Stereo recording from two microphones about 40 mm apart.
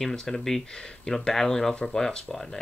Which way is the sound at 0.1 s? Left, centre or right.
Centre.